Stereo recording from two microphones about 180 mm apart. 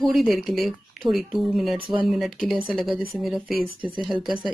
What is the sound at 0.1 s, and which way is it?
Speech, centre (ahead or behind).